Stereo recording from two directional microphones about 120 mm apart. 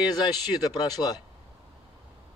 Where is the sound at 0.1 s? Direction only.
35° left (ahead or behind).